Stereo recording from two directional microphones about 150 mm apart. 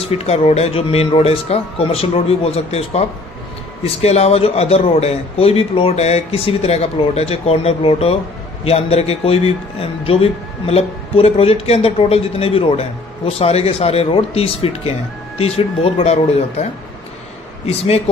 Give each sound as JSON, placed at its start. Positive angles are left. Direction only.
{"t": 0.0, "sound": "a man's voice", "side_deg": 40}
{"t": 17.6, "sound": "a man's voice", "side_deg": 45}